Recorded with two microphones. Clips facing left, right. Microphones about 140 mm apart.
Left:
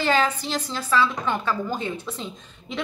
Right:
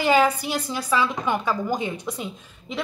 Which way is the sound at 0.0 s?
10° right (ahead or behind).